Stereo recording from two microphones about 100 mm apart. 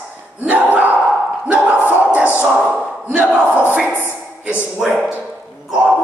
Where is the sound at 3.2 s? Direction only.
10° right (ahead or behind).